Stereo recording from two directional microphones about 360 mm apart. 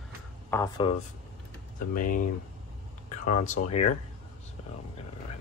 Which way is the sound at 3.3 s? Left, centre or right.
Left.